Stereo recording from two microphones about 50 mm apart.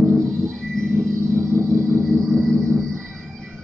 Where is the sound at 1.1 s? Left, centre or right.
Right.